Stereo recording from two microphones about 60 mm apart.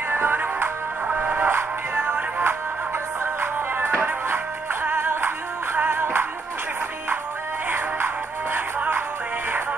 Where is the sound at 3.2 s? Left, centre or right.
Right.